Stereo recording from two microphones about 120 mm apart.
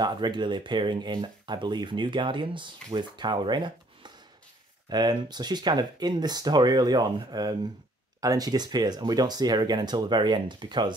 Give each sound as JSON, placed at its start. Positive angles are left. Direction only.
{"t": 0.0, "sound": "speech", "side_deg": -40}